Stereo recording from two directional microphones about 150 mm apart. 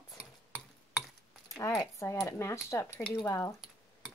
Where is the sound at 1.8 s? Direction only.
20° left (ahead or behind).